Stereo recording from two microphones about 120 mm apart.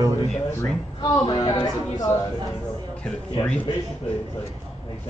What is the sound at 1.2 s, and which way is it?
Speech, 35° left (ahead or behind).